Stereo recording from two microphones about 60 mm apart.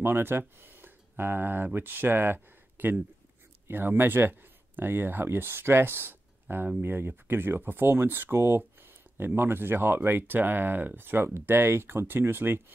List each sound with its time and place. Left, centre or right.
0.0 s speech: right